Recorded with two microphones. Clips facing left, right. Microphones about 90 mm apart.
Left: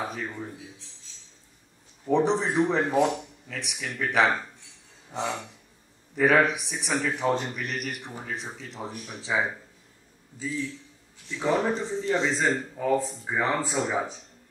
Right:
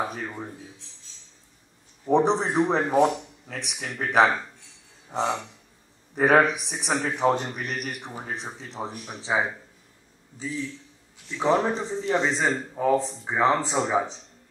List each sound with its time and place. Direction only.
0.0 s a man's voice: 40° right (ahead or behind)
2.0 s a man's voice: 35° right (ahead or behind)
11.4 s speech: 20° right (ahead or behind)